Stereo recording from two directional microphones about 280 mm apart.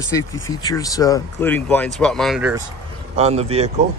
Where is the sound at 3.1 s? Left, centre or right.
Right.